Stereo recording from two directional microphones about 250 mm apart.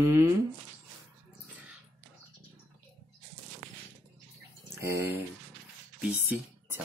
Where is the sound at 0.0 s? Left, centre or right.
Centre.